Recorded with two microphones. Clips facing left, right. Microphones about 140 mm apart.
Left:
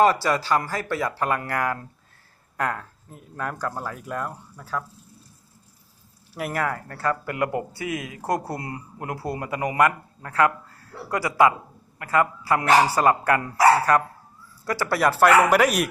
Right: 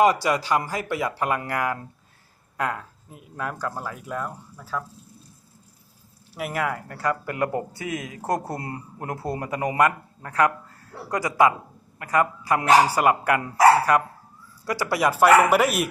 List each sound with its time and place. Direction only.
0.0 s speech: 15° right (ahead or behind)
6.3 s speech: 10° right (ahead or behind)